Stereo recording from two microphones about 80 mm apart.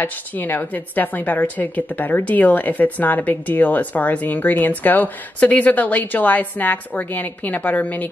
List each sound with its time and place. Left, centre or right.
0.0 s a woman's voice: left